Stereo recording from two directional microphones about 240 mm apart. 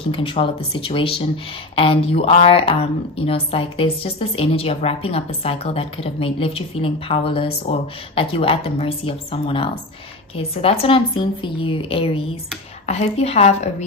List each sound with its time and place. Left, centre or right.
0.1 s a woman's voice: left